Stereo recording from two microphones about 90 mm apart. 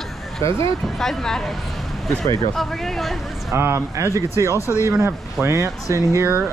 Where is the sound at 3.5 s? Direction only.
30° right (ahead or behind).